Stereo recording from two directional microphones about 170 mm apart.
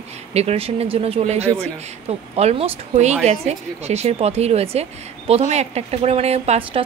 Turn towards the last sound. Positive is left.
turn(degrees=-40)  # may be behind; listen again after turning